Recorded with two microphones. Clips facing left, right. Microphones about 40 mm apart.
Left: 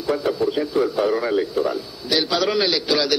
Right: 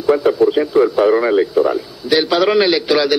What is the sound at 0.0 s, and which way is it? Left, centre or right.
A man's voice, right.